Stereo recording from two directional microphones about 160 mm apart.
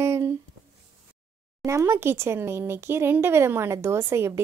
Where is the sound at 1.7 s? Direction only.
15° right (ahead or behind).